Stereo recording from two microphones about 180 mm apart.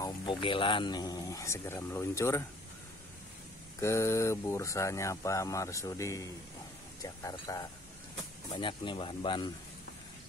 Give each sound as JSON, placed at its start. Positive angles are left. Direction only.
{"t": 0.0, "sound": "speech", "side_deg": 25}
{"t": 3.8, "sound": "speech", "side_deg": 15}